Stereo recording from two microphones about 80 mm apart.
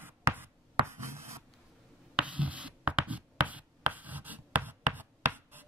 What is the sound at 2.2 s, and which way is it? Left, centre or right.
Writing, centre.